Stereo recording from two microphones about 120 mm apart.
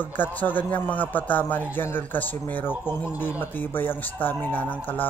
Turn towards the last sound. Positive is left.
turn(degrees=15)  # may be behind; listen again after turning